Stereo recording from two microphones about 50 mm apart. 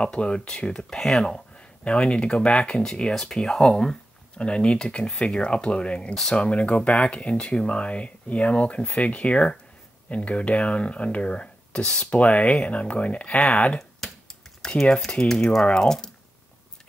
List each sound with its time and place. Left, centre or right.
0.0 s speech: left
11.8 s speech: centre
12.1 s speech: left
13.7 s computer keyboard: centre
14.8 s speech: centre